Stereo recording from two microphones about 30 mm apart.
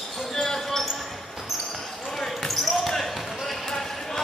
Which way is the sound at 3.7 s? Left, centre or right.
Centre.